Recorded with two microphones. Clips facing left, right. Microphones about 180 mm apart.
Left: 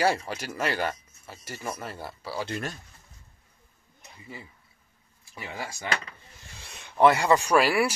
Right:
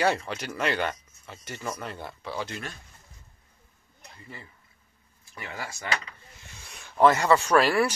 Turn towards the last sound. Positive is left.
turn(degrees=5)  # may be behind; listen again after turning